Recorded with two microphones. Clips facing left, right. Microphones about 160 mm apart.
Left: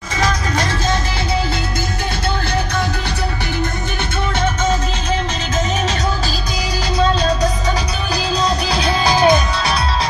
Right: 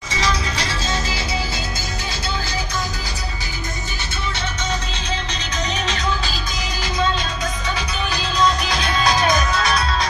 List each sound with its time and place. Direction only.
0.2 s music: 50° left (ahead or behind)
8.4 s music: 30° left (ahead or behind)